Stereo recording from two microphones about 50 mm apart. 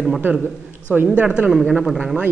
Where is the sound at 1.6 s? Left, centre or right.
Centre.